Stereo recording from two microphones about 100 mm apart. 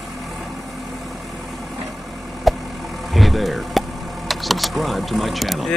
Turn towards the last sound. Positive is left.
turn(degrees=0)  # may be behind; listen again after turning